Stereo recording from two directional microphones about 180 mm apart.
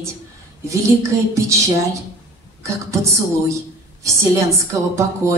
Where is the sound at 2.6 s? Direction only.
15° right (ahead or behind).